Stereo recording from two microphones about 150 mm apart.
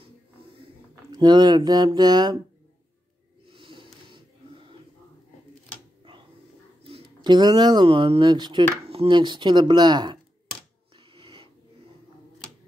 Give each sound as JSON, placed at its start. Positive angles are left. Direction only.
{"t": 1.1, "sound": "speech", "side_deg": -25}
{"t": 3.5, "sound": "snort", "side_deg": -35}
{"t": 6.9, "sound": "speech", "side_deg": -30}
{"t": 11.1, "sound": "wheeze", "side_deg": -35}